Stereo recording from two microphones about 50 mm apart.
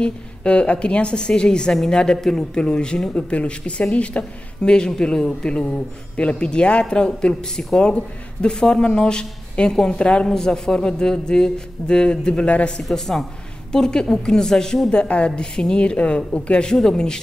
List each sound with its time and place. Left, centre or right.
0.0 s a woman's voice: left
12.8 s a woman's voice: centre